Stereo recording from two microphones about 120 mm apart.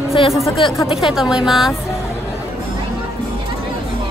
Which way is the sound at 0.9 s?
45° left (ahead or behind).